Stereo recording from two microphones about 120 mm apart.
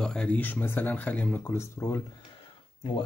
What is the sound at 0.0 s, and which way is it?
Speech, 5° left (ahead or behind).